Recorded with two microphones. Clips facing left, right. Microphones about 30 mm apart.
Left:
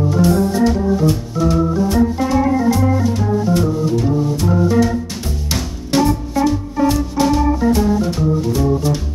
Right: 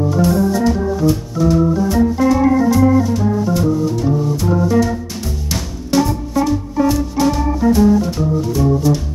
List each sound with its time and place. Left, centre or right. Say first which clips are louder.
0.1 s organ: even; centre
3.1 s music: even; centre
6.3 s music: right 1 dB; centre